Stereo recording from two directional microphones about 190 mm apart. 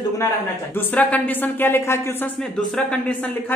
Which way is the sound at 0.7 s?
10° left (ahead or behind).